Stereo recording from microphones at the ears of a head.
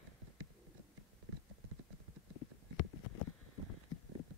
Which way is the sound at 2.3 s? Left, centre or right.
Left.